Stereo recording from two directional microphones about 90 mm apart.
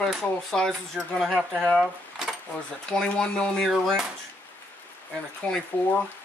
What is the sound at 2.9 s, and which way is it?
Speech, 10° left (ahead or behind).